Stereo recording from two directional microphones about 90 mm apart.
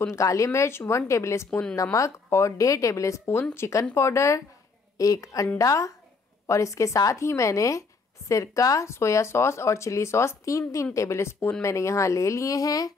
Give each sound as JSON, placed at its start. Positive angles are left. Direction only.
{"t": 0.0, "sound": "speech", "side_deg": 35}
{"t": 1.5, "sound": "speech", "side_deg": 15}
{"t": 1.8, "sound": "speech", "side_deg": 35}